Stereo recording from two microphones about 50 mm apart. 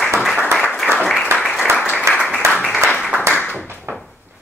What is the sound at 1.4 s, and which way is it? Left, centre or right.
Applause, centre.